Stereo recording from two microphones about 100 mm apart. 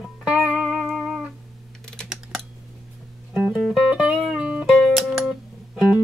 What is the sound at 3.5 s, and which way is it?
Music, 5° right (ahead or behind).